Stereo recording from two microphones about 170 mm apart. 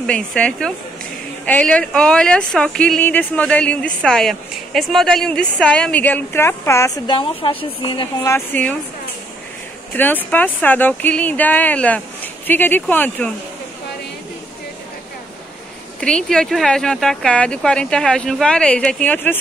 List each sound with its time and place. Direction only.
0.0 s speech: 5° left (ahead or behind)
7.1 s a woman's voice: 30° left (ahead or behind)
8.2 s speech: 10° left (ahead or behind)
9.9 s speech: 10° left (ahead or behind)
16.0 s speech: 5° left (ahead or behind)